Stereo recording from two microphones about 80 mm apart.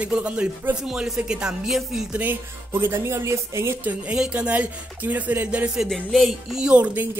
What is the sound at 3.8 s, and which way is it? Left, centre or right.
Speech, centre.